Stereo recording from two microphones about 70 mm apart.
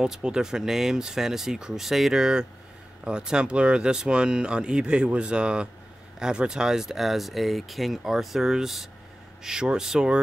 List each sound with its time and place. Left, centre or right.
0.0 s speech: centre